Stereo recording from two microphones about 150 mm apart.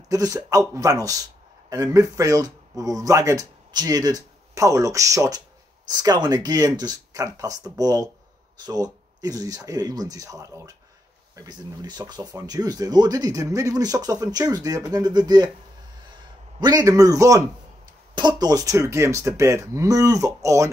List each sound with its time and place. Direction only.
0.1 s speech: 25° right (ahead or behind)
16.5 s speech: 25° right (ahead or behind)